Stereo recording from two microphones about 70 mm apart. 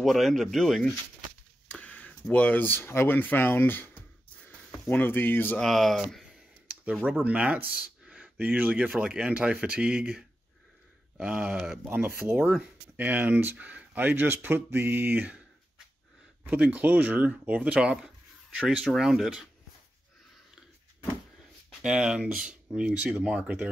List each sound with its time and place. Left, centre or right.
0.0 s speech: centre
1.7 s a sound: left
2.2 s speech: left
5.6 s speech: centre
6.7 s a sound: centre
7.2 s speech: right
11.2 s speech: centre
11.5 s speech: centre
11.8 s speech: right
12.4 s speech: centre
12.9 s speech: right
16.4 s speech: centre
21.8 s speech: centre